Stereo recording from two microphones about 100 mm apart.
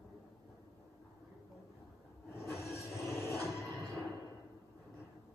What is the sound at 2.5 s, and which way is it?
Train, 25° left (ahead or behind).